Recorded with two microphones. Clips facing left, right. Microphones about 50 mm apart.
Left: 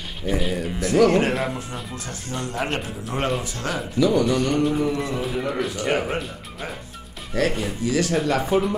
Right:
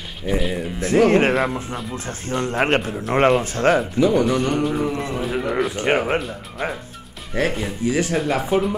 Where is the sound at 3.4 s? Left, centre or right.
Right.